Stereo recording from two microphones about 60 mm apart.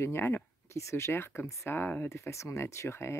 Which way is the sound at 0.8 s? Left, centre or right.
Left.